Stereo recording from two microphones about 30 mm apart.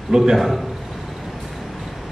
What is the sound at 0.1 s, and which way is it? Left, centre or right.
Speech, centre.